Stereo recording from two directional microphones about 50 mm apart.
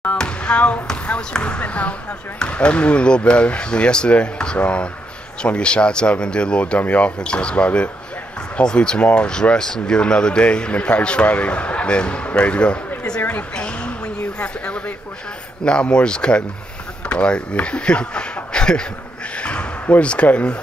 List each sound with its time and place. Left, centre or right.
0.4 s speech: left
6.8 s speech: left
13.6 s a sound: left
15.6 s speech: centre
19.3 s basketball bounce: left
20.0 s speech: left